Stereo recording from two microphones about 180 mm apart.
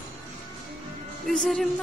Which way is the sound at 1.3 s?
5° left (ahead or behind).